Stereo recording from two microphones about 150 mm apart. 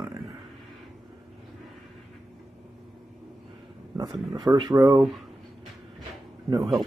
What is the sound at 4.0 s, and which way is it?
Speech, 25° right (ahead or behind).